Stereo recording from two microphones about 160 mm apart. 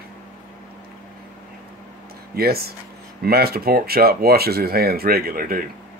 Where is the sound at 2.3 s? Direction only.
75° right (ahead or behind).